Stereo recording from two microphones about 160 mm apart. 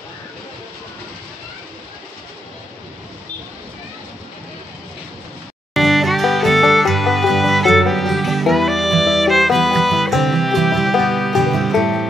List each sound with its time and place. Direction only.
5.8 s music: centre (ahead or behind)